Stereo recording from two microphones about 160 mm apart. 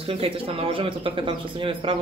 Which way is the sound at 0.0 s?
35° right (ahead or behind).